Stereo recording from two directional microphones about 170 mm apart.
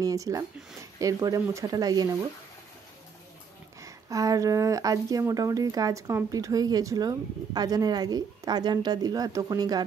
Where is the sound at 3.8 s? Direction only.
20° right (ahead or behind).